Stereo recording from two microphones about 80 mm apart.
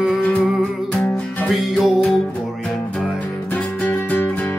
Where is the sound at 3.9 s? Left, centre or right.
Left.